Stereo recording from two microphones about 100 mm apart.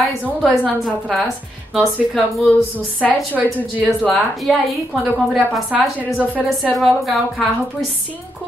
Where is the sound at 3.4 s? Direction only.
15° left (ahead or behind).